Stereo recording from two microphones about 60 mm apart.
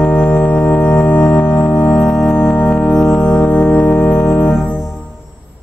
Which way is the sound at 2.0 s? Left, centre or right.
Centre.